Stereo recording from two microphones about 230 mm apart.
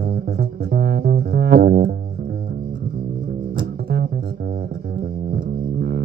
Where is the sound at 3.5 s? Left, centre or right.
Right.